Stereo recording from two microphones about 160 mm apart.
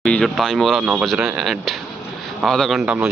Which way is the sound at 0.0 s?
5° left (ahead or behind).